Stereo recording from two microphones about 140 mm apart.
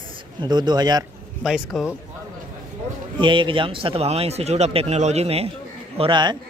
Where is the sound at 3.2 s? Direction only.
35° right (ahead or behind).